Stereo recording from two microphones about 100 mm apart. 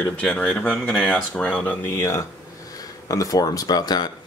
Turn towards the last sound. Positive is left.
turn(degrees=45)  # may be behind; listen again after turning